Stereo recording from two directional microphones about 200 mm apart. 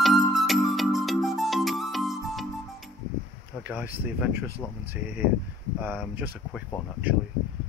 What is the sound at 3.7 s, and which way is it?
Speech, 10° right (ahead or behind).